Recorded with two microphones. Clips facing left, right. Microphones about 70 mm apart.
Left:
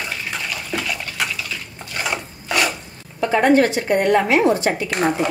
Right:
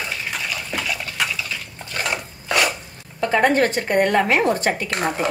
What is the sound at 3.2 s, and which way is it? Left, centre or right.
A woman's voice, right.